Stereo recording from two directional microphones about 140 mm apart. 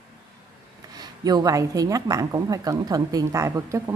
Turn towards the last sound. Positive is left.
turn(degrees=-20)  # may be behind; listen again after turning